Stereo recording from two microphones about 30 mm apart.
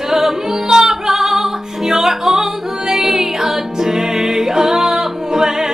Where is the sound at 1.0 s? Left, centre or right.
Centre.